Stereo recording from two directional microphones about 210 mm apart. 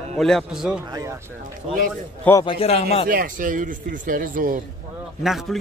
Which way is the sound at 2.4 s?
25° left (ahead or behind).